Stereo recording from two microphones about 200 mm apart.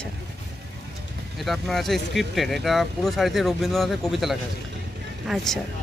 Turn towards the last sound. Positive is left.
turn(degrees=0)  # may be behind; listen again after turning